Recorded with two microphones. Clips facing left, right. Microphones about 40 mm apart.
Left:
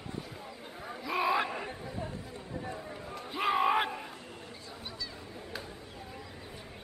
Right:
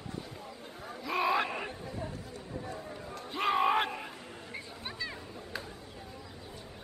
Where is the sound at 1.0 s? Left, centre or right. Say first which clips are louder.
Even; centre.